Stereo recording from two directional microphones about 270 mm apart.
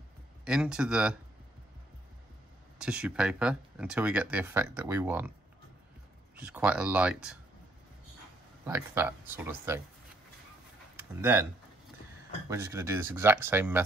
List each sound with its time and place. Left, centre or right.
0.5 s speech: centre
2.8 s speech: centre
6.4 s speech: centre
8.6 s speech: centre
11.1 s speech: centre
12.4 s speech: centre